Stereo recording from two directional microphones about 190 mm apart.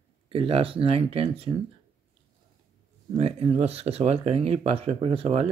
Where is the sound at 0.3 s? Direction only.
30° right (ahead or behind).